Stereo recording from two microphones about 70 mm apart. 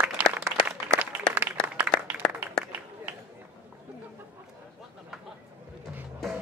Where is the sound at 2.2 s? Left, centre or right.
Centre.